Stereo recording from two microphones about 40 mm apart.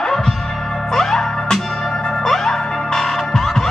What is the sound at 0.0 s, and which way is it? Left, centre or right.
Music, centre.